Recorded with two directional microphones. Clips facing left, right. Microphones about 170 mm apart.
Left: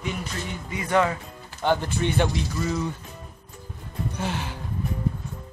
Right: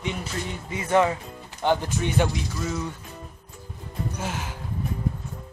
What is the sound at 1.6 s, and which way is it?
A man's voice, 10° right (ahead or behind).